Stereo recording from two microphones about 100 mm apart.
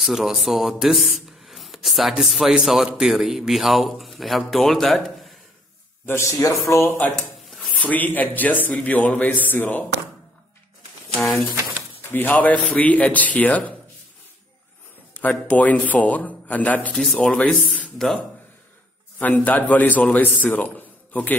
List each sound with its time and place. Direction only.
0.0 s speech: 5° right (ahead or behind)
6.0 s speech: 25° left (ahead or behind)
7.2 s a sound: centre (ahead or behind)
7.7 s a man's voice: 15° left (ahead or behind)
11.2 s speech: centre (ahead or behind)
11.7 s speech: 15° left (ahead or behind)
15.1 s speech: 15° left (ahead or behind)
16.9 s speech: 5° left (ahead or behind)
19.1 s speech: 15° left (ahead or behind)
20.4 s a sound: 15° left (ahead or behind)